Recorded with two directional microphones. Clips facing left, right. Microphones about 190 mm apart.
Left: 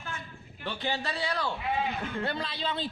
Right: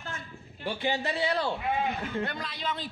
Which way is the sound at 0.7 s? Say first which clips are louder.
Right 3 dB; 15° right (ahead or behind).